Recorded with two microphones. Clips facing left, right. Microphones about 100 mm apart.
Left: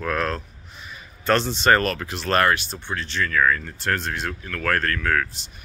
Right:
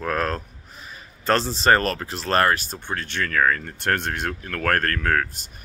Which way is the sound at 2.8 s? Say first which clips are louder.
Left 1 dB; 50° right (ahead or behind).